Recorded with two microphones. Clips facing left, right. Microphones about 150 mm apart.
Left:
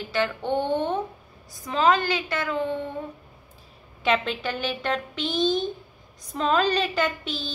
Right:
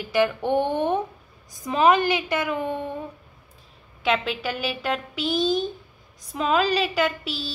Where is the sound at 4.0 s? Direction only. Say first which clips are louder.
Even; centre (ahead or behind).